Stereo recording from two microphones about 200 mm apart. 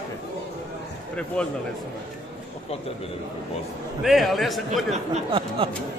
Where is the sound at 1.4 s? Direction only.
5° left (ahead or behind).